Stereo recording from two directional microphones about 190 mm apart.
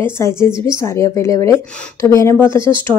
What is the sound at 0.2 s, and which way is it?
Speech, 15° left (ahead or behind).